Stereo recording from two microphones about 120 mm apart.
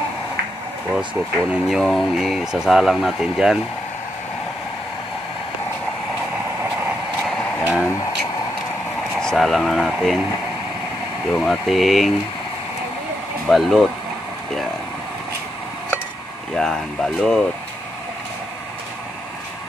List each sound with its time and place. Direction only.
1.5 s speech: centre (ahead or behind)
7.6 s a sound: 5° right (ahead or behind)
9.2 s speech: 5° left (ahead or behind)
11.3 s speech: centre (ahead or behind)
13.5 s speech: centre (ahead or behind)
16.5 s speech: 5° left (ahead or behind)